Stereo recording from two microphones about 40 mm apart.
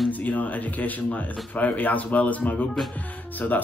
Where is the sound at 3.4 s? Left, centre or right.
Left.